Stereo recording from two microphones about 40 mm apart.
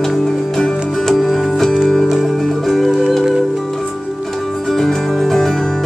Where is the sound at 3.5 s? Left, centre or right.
Centre.